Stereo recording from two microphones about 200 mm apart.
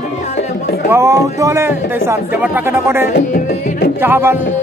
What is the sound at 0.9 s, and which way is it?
Speech, 15° right (ahead or behind).